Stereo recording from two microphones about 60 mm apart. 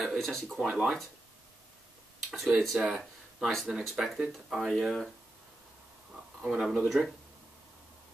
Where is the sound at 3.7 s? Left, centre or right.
Centre.